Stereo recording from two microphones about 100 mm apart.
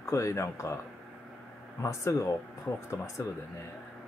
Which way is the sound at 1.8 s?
30° left (ahead or behind).